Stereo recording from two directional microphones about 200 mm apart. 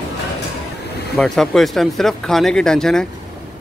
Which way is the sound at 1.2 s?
Centre (ahead or behind).